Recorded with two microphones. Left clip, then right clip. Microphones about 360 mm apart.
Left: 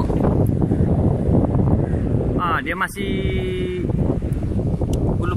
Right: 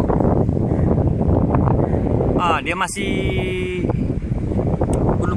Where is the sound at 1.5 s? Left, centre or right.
Right.